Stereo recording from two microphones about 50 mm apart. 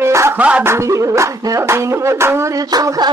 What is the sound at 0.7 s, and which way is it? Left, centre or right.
Music, right.